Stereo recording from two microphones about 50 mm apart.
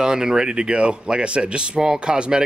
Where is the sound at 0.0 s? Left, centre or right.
Centre.